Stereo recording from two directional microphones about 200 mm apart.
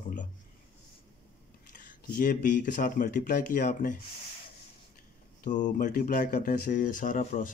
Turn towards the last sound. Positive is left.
turn(degrees=40)  # may be behind; listen again after turning